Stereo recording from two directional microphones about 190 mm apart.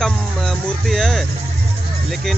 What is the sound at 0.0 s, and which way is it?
Speech, centre (ahead or behind).